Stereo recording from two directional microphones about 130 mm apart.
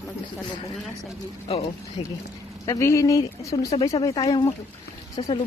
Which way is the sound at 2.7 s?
25° left (ahead or behind).